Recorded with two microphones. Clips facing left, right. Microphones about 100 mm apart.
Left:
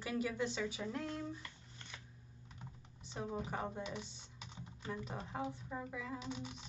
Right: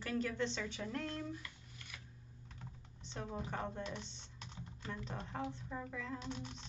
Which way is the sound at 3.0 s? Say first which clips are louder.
Left 2 dB; 10° left (ahead or behind).